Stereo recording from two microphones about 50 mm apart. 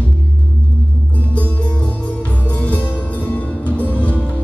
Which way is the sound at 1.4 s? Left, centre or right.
Left.